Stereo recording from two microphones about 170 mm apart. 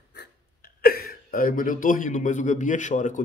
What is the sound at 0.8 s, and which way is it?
A man's voice, 65° left (ahead or behind).